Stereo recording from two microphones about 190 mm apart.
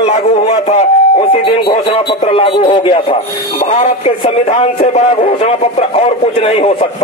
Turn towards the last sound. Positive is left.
turn(degrees=30)  # may be behind; listen again after turning